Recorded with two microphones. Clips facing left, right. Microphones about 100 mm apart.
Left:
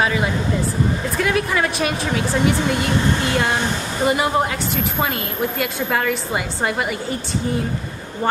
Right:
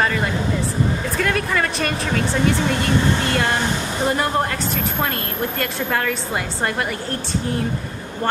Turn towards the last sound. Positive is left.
turn(degrees=5)  # may be behind; listen again after turning